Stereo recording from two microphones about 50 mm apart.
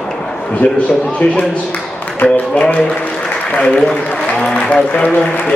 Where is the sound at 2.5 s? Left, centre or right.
Left.